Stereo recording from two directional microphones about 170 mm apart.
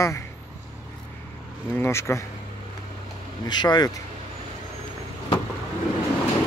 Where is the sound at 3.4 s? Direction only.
25° left (ahead or behind).